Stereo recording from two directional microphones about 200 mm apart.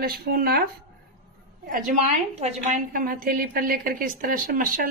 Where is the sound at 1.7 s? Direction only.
40° right (ahead or behind).